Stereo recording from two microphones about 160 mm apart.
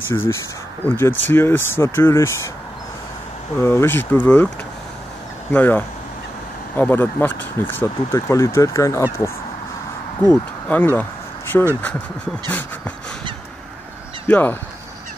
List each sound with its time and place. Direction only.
0.1 s speech: 15° left (ahead or behind)
3.5 s speech: 15° left (ahead or behind)
5.5 s speech: 10° left (ahead or behind)
10.3 s speech: 10° left (ahead or behind)
14.2 s speech: 10° left (ahead or behind)